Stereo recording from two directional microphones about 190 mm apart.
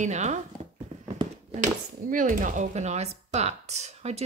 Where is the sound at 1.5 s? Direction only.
40° right (ahead or behind).